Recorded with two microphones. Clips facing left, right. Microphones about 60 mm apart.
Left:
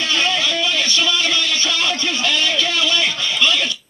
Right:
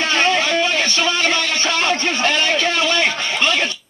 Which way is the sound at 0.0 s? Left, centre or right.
Right.